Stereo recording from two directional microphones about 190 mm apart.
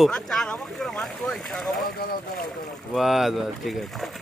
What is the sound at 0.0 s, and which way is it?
Speech, 5° left (ahead or behind).